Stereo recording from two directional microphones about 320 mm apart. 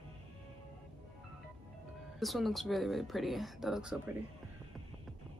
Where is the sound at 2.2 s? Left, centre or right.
Centre.